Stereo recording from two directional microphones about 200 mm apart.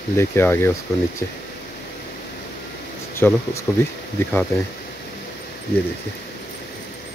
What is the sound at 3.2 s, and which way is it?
Speech, 5° left (ahead or behind).